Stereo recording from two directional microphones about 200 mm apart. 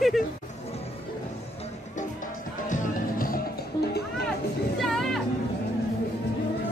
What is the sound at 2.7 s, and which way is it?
Music, 40° left (ahead or behind).